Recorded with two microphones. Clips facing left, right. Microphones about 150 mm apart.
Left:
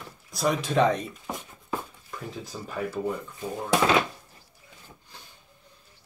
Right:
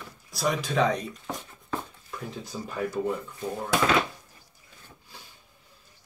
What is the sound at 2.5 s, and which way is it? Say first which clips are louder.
Speech: right 2 dB; 5° right (ahead or behind).